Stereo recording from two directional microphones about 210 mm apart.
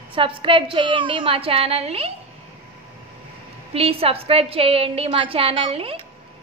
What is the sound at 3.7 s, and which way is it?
A woman's voice, 25° right (ahead or behind).